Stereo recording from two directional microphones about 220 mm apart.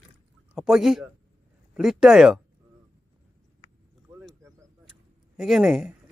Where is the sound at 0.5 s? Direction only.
Centre (ahead or behind).